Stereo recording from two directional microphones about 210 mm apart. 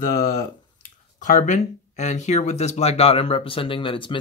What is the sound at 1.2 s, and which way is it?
Speech, 35° left (ahead or behind).